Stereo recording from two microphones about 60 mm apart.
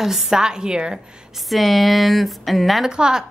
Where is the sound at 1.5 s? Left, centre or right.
Centre.